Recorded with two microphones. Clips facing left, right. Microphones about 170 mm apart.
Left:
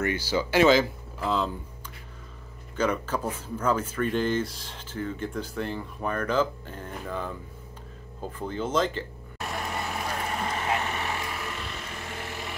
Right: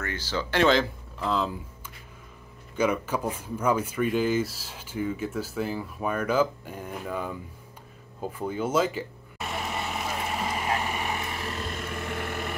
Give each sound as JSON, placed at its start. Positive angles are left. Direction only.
{"t": 0.0, "sound": "speech", "side_deg": 10}
{"t": 2.7, "sound": "speech", "side_deg": -10}
{"t": 8.2, "sound": "vehicle", "side_deg": -10}
{"t": 11.9, "sound": "vehicle", "side_deg": -55}